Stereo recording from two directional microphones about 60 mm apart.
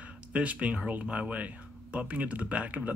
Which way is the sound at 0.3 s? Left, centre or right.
Right.